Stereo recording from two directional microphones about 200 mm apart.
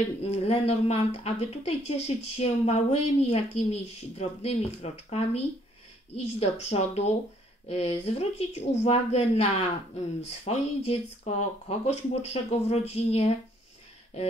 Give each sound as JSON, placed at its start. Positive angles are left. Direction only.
{"t": 0.2, "sound": "speech", "side_deg": 30}